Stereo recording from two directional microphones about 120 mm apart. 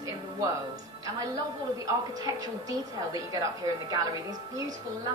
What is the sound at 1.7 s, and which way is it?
Speech, 30° right (ahead or behind).